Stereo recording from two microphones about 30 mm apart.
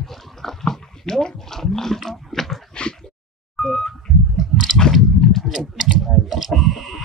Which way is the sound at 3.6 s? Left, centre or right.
Centre.